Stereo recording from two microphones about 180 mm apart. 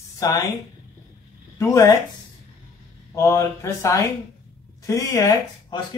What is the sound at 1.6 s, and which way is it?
Speech, 15° left (ahead or behind).